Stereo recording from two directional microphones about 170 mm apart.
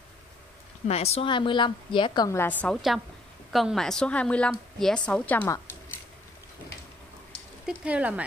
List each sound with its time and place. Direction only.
0.8 s a woman's voice: 35° left (ahead or behind); by 2.5 s 15° left (ahead or behind)
2.6 s a woman's voice: centre (ahead or behind)
5.4 s a sound: 20° left (ahead or behind)
7.6 s speech: 5° right (ahead or behind)